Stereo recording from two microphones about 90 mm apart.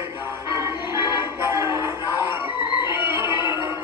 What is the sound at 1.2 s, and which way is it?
Music, 25° right (ahead or behind).